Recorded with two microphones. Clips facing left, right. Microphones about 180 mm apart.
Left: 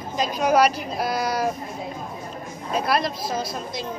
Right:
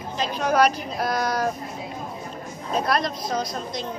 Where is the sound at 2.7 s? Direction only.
5° left (ahead or behind).